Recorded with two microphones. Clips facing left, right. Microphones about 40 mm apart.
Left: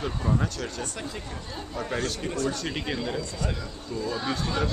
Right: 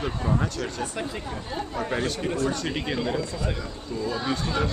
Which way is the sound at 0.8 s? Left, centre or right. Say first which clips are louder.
Right 4 dB; centre.